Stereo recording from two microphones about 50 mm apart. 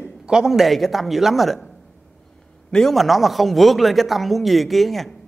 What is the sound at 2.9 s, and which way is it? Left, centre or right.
A man's voice, centre.